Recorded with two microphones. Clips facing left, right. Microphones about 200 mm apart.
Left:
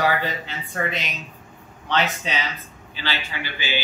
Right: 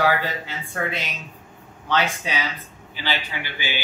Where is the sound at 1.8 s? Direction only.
10° right (ahead or behind).